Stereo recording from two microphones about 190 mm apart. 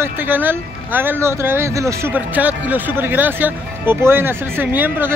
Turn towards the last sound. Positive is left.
turn(degrees=-10)  # may be behind; listen again after turning